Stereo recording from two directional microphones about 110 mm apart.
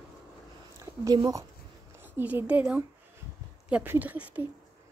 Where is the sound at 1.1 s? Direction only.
40° right (ahead or behind).